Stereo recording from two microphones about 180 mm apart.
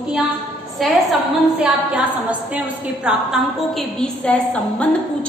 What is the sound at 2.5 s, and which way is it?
A woman's voice, 5° right (ahead or behind).